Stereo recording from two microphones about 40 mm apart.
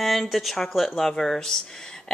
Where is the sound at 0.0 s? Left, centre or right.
Centre.